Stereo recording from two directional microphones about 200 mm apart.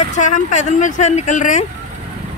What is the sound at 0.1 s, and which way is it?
Speech, 40° left (ahead or behind).